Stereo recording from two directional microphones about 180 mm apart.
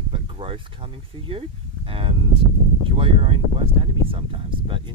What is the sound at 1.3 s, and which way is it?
Speech, 30° right (ahead or behind).